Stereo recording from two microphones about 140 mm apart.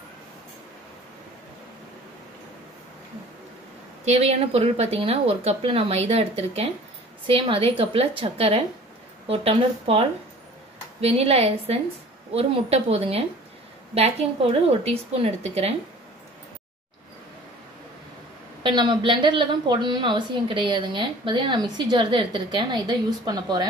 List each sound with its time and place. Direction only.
4.0 s a woman's voice: 50° right (ahead or behind)
18.6 s a woman's voice: 30° right (ahead or behind)